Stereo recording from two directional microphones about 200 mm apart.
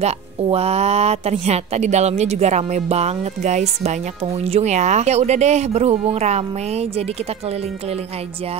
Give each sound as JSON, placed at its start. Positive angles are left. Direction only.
{"t": 0.0, "sound": "a woman's voice", "side_deg": -30}